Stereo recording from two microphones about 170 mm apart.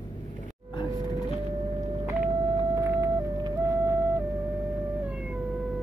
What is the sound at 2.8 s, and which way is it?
Music, 20° right (ahead or behind).